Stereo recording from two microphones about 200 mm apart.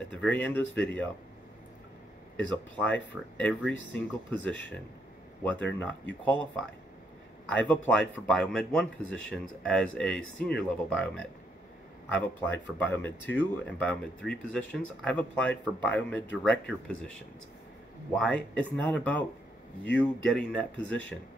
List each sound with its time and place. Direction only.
0.1 s speech: 5° left (ahead or behind)
2.3 s speech: 5° left (ahead or behind)
18.1 s speech: 5° left (ahead or behind)